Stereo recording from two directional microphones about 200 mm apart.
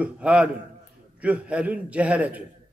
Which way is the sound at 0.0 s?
5° right (ahead or behind).